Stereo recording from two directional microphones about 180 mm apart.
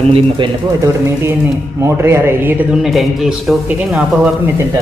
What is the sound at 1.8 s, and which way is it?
Speech, 15° right (ahead or behind).